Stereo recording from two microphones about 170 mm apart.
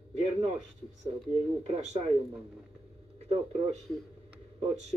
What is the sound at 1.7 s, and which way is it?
Speech, 40° right (ahead or behind).